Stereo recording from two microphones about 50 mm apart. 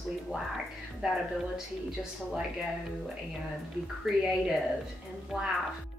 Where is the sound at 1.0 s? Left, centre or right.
Centre.